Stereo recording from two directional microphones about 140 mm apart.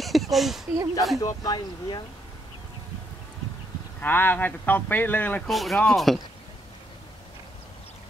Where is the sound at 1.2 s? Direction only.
25° left (ahead or behind).